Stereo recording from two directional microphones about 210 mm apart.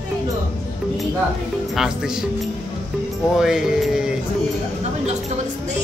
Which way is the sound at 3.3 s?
Centre (ahead or behind).